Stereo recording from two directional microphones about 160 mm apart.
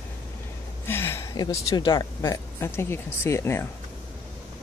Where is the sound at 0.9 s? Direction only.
15° left (ahead or behind).